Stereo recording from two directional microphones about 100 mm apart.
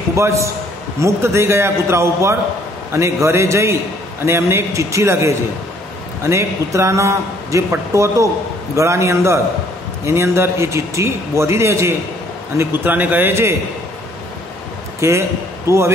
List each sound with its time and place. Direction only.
0.1 s a man's voice: 30° right (ahead or behind)
15.0 s a man's voice: 30° right (ahead or behind)